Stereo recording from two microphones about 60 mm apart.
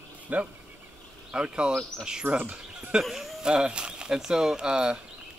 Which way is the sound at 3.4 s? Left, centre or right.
Centre.